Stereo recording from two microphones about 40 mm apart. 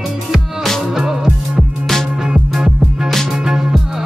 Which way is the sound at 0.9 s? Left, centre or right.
Centre.